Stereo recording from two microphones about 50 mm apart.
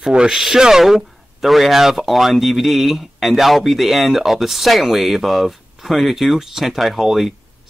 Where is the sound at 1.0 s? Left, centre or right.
Centre.